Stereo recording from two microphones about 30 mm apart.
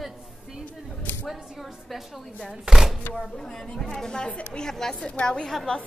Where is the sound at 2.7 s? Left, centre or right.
Centre.